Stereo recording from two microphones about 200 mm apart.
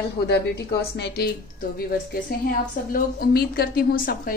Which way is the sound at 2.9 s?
50° left (ahead or behind).